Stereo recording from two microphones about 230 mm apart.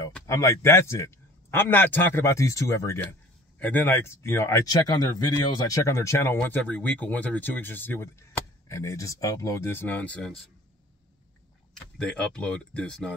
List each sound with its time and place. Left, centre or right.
0.1 s a man's voice: centre
11.7 s speech: centre